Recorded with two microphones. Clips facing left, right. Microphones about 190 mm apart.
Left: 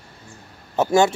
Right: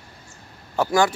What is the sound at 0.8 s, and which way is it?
Speech, 25° left (ahead or behind).